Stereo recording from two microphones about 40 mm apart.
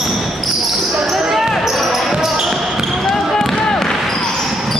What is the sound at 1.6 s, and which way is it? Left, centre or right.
Basketball bounce, centre.